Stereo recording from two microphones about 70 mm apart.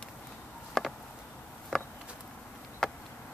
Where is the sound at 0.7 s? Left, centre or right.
Centre.